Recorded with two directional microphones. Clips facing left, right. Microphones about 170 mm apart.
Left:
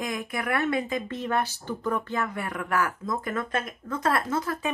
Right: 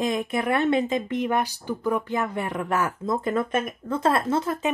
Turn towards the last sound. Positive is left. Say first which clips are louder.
# right 4 dB
turn(degrees=-25)  # may be behind; listen again after turning